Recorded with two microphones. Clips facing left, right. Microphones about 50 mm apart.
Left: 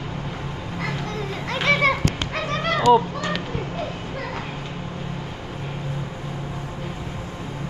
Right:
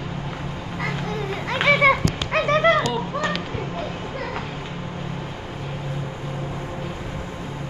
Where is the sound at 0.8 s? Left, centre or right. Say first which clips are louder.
Right 2 dB; centre.